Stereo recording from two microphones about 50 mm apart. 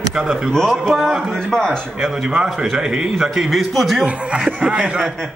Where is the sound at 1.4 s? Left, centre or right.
Centre.